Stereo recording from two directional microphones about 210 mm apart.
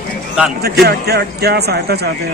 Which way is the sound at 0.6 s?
50° right (ahead or behind).